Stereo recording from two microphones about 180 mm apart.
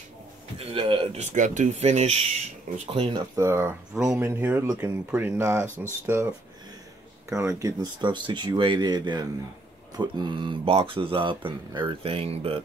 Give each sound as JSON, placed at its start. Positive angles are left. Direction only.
{"t": 0.6, "sound": "speech", "side_deg": -30}